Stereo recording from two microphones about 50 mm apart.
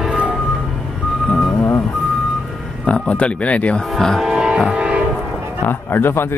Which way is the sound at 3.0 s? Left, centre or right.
Left.